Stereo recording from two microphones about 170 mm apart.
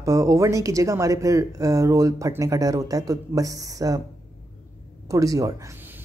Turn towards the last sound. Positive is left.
turn(degrees=-20)  # may be behind; listen again after turning